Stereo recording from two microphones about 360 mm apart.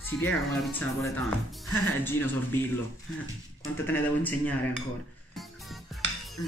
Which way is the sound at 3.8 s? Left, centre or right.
Centre.